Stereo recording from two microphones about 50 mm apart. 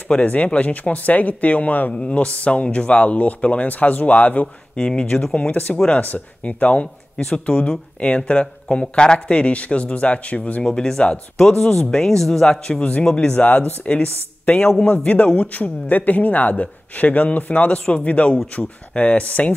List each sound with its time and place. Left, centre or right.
0.1 s speech: left
4.7 s speech: centre
7.2 s speech: centre
7.4 s speech: left
10.6 s speech: centre
12.4 s speech: centre
13.5 s a man's voice: left